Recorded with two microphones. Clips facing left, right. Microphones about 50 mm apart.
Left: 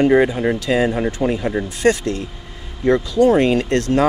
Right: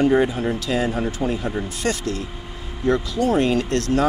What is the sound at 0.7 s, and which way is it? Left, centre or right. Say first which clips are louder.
Speech: left 6 dB; left.